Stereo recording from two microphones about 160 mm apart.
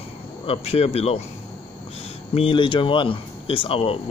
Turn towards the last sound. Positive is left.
turn(degrees=35)  # may be behind; listen again after turning